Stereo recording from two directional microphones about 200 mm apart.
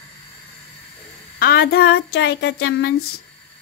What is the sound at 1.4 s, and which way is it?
Child singing, 50° left (ahead or behind).